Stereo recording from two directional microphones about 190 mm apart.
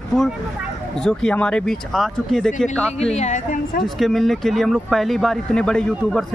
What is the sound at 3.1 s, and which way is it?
Speech, 40° left (ahead or behind).